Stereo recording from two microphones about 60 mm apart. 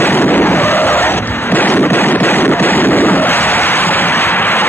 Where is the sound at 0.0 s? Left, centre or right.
Left.